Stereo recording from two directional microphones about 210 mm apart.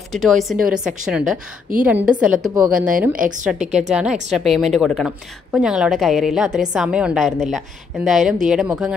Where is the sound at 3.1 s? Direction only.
40° right (ahead or behind).